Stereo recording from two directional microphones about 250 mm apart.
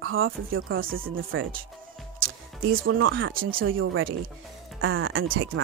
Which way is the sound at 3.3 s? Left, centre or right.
Right.